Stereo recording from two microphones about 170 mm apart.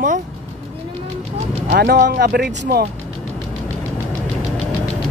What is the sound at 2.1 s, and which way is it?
Speech, 75° right (ahead or behind).